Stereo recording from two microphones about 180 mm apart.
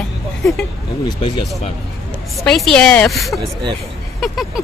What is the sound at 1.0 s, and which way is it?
Speech, 25° left (ahead or behind).